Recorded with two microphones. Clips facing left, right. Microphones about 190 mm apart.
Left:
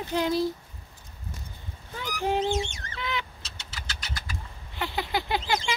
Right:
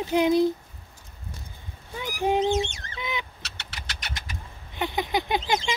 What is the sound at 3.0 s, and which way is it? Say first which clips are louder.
Fowl: even; 20° right (ahead or behind).